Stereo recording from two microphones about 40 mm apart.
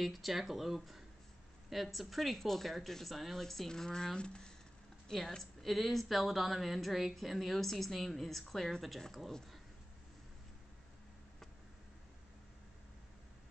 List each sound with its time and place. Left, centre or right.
0.0 s a woman's voice: centre
5.6 s a woman's voice: centre